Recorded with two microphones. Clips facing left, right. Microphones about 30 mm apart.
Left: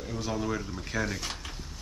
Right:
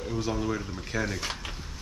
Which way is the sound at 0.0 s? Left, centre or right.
Centre.